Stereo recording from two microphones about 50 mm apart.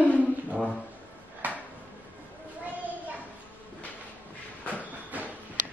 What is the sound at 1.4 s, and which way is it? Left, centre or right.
Drawer open or close, right.